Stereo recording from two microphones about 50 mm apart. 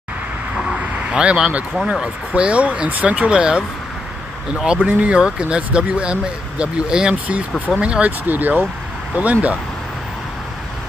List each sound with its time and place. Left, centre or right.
0.7 s a sound: right
2.3 s speech: right
4.6 s speech: right
7.5 s speech: left
7.8 s speech: right
8.3 s speech: right